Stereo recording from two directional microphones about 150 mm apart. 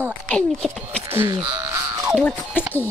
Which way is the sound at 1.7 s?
20° right (ahead or behind).